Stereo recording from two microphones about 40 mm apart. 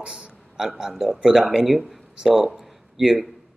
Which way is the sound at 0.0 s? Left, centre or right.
Right.